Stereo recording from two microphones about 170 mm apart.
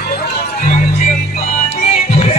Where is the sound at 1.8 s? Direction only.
40° left (ahead or behind).